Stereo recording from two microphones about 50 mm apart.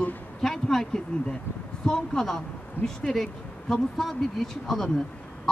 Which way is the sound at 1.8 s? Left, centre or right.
Centre.